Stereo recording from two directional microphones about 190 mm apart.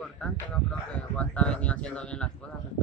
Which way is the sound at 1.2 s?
5° left (ahead or behind).